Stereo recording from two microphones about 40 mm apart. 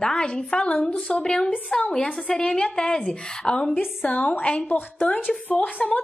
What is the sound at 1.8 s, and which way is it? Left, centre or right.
Speech, left.